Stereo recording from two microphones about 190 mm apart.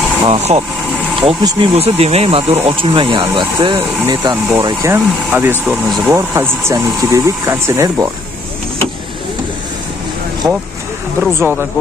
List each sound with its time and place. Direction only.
0.3 s speech: 35° right (ahead or behind)
1.2 s speech: 25° right (ahead or behind); by 6.1 s centre (ahead or behind)
6.1 s speech: 15° right (ahead or behind)
10.4 s speech: 5° right (ahead or behind)